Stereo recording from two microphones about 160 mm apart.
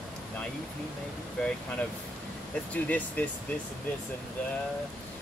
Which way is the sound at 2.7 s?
10° left (ahead or behind).